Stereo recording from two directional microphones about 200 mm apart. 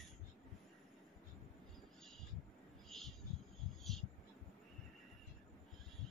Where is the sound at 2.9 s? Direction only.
Centre (ahead or behind).